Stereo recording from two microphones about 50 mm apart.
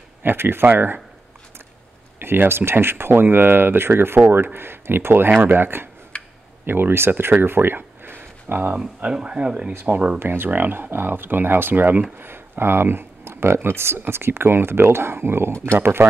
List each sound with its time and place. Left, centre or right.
0.2 s speech: right
0.7 s speech: right
2.1 s speech: right
7.4 s a sound: right
9.0 s speech: right
9.7 s speech: right
10.1 s speech: right
12.2 s speech: right